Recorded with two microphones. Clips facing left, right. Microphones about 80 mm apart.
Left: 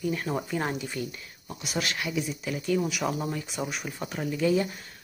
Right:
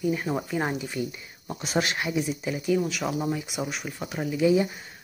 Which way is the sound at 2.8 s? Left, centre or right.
Centre.